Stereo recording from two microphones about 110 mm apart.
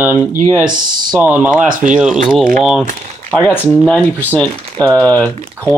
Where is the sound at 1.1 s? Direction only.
15° right (ahead or behind).